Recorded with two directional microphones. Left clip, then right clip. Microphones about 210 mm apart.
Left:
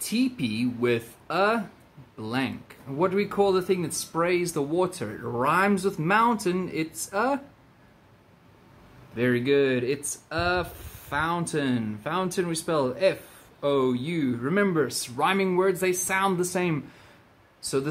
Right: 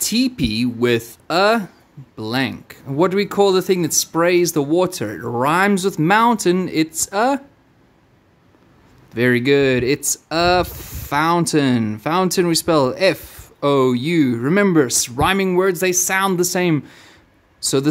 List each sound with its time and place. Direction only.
0.0 s speech: 50° right (ahead or behind)
9.1 s speech: 55° right (ahead or behind)